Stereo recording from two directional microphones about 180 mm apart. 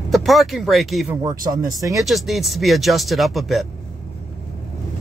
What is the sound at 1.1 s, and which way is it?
Speech, 20° right (ahead or behind).